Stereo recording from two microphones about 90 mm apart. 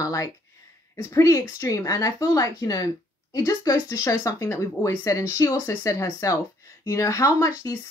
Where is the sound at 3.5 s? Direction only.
30° left (ahead or behind).